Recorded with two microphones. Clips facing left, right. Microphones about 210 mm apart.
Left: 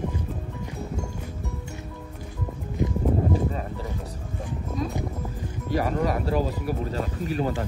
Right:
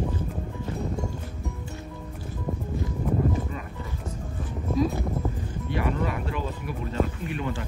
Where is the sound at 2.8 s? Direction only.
20° left (ahead or behind).